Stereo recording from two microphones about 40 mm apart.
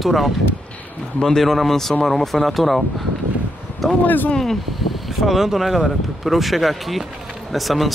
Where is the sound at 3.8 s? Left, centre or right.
Centre.